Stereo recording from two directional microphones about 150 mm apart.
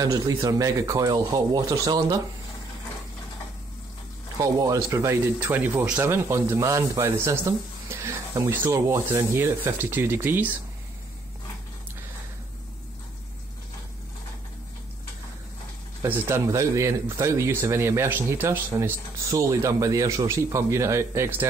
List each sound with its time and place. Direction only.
0.0 s speech: 25° right (ahead or behind)
4.4 s speech: 25° right (ahead or behind)
16.0 s speech: 15° right (ahead or behind)